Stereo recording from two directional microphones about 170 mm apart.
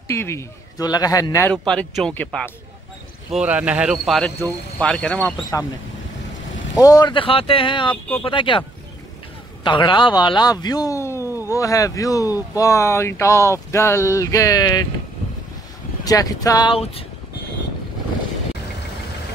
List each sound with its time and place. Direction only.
0.1 s a man's voice: 15° left (ahead or behind)
1.7 s a man's voice: 5° left (ahead or behind)
3.3 s a man's voice: 5° right (ahead or behind)
5.5 s speech: 15° left (ahead or behind)
6.8 s a man's voice: 25° left (ahead or behind)
16.0 s a man's voice: 20° left (ahead or behind)